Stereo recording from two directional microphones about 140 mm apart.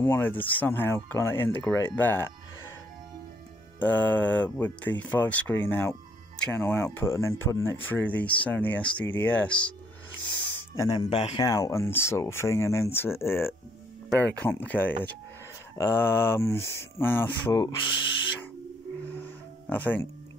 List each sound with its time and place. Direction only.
0.0 s speech: 15° left (ahead or behind)
3.8 s speech: 10° left (ahead or behind)
10.8 s speech: 25° left (ahead or behind)
11.1 s speech: 50° left (ahead or behind)
11.3 s speech: 25° left (ahead or behind)
17.6 s speech: 30° left (ahead or behind)
19.7 s speech: 15° left (ahead or behind)